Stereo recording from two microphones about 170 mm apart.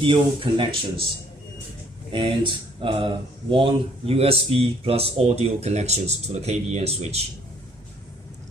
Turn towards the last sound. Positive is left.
turn(degrees=-40)  # may be behind; listen again after turning